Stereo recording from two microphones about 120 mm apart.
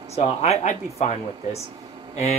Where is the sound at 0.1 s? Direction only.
60° left (ahead or behind).